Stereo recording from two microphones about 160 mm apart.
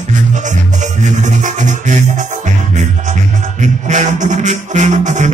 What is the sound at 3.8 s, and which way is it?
Music, 50° right (ahead or behind).